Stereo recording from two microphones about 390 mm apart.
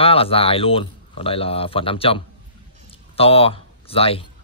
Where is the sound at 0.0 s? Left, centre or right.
Centre.